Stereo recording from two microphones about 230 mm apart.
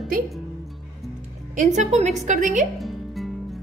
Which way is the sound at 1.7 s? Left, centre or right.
Right.